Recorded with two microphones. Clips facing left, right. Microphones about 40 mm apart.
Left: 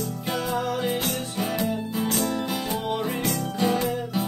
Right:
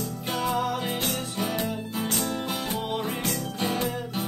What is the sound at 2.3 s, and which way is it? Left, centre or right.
Music, centre.